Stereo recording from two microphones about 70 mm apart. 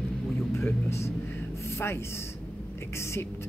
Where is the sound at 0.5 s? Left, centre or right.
Left.